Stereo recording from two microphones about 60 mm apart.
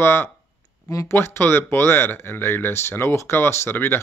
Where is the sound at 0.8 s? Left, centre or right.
Left.